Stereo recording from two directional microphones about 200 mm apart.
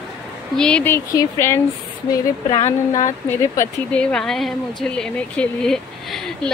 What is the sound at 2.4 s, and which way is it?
Speech, 30° left (ahead or behind).